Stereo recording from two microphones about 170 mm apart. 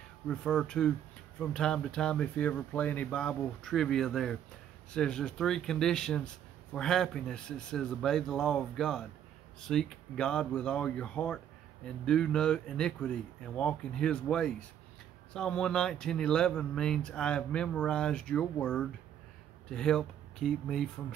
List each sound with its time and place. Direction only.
0.3 s speech: 5° left (ahead or behind)